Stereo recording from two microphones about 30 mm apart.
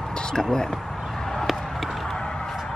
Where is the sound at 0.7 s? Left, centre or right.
Centre.